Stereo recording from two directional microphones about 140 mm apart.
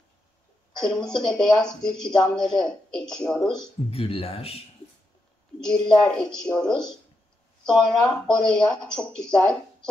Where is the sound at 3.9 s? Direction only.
45° left (ahead or behind).